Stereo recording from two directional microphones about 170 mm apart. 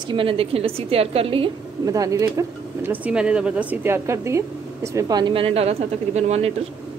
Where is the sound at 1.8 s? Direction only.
20° right (ahead or behind); by 6.5 s 40° right (ahead or behind).